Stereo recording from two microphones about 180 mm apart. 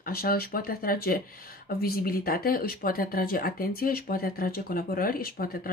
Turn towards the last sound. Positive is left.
turn(degrees=55)  # may be behind; listen again after turning